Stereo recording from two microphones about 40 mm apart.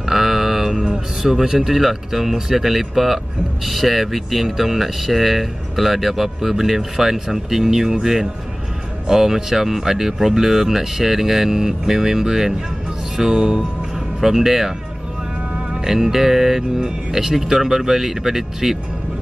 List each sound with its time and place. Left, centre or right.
0.0 s speech: centre
15.7 s speech: centre